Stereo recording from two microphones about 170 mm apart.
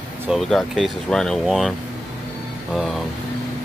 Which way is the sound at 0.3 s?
Centre (ahead or behind).